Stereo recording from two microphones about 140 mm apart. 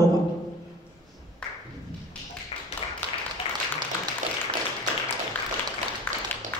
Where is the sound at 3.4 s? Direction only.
40° left (ahead or behind).